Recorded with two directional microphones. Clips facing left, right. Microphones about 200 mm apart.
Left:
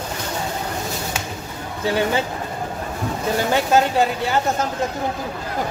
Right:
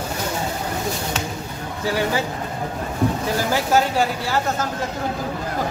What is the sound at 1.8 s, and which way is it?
Speech, 25° left (ahead or behind).